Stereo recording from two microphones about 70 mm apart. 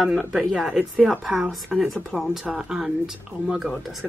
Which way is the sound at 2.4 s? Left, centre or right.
Centre.